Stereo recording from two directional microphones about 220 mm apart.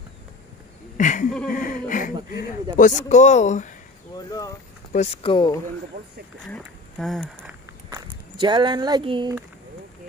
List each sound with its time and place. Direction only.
0.9 s speech: 35° left (ahead or behind)
4.3 s speech: 15° left (ahead or behind)
4.9 s speech: 30° left (ahead or behind)
6.4 s speech: centre (ahead or behind)
7.9 s speech: 20° right (ahead or behind)